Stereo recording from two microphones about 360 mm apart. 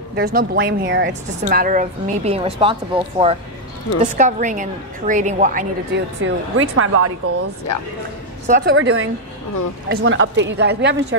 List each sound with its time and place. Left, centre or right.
0.1 s a woman's voice: right
8.5 s a woman's voice: right
8.7 s a woman's voice: right